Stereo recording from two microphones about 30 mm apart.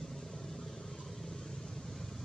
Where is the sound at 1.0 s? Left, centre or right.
Centre.